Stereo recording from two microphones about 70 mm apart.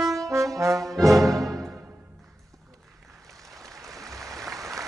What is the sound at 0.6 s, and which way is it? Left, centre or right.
Brass instrument, right.